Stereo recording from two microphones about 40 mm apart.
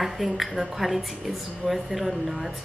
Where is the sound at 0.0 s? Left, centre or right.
Centre.